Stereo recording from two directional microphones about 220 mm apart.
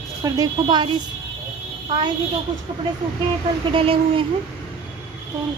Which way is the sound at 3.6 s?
25° right (ahead or behind).